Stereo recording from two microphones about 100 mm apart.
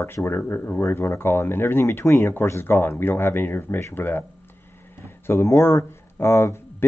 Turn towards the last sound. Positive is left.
turn(degrees=25)  # may be behind; listen again after turning